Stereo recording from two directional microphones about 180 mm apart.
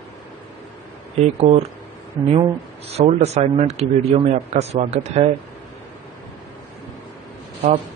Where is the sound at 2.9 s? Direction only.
35° right (ahead or behind).